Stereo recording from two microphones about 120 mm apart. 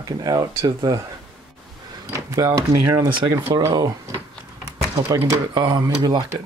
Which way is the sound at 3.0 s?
40° right (ahead or behind).